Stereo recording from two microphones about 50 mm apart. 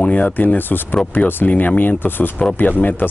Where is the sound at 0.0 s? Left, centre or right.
Left.